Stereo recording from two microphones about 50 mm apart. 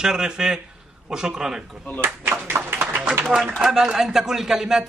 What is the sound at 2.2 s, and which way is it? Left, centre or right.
Speech, right.